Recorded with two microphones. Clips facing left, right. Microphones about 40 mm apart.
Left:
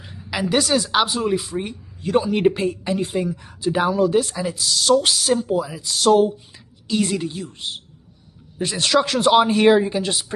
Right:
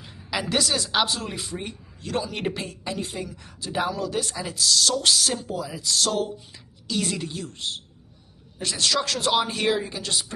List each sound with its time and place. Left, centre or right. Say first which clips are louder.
0.3 s music: left 5 dB; centre
0.7 s speech: left 5 dB; centre; by 4.2 s left
4.2 s a woman's voice: left 5 dB; centre